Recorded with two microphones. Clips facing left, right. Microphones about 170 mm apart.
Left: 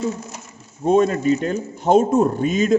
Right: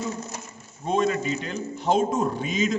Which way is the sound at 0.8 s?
50° left (ahead or behind).